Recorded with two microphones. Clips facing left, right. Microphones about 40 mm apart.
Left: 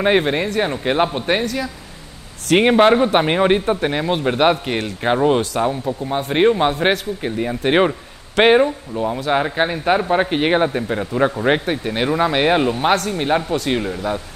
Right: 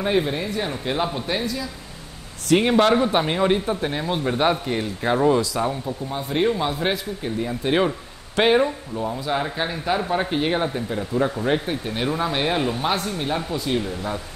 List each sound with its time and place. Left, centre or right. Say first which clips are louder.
0.0 s speech: left 6 dB; left
0.8 s a man's voice: left 7 dB; left
2.7 s speech: left 6 dB; left
3.1 s speech: left 5 dB; left
3.8 s speech: left 5 dB; left
8.9 s speech: left 6 dB; left
11.4 s speech: left 5 dB; left
12.5 s speech: left 6 dB; left
12.8 s speech: left 6 dB; left
13.5 s speech: left 4 dB; left